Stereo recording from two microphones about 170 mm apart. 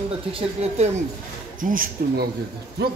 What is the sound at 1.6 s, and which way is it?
Speech, 55° right (ahead or behind).